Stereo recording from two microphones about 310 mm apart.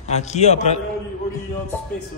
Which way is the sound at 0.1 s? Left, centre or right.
Left.